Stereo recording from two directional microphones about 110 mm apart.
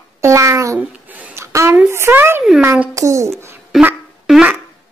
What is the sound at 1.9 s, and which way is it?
Speech, 20° right (ahead or behind).